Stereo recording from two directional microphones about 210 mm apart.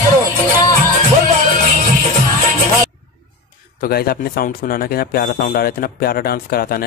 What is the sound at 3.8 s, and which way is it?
Speech, 45° left (ahead or behind).